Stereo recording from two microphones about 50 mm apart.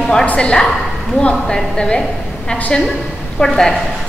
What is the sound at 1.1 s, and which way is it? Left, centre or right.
Speech, centre.